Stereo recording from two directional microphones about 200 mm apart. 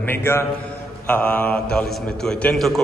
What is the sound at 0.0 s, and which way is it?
A man's voice, 10° left (ahead or behind).